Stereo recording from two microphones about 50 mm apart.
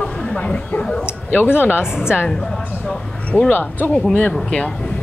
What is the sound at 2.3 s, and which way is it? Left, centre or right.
Speech, centre.